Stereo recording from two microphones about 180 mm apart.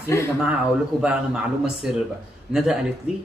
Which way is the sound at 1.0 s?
5° right (ahead or behind).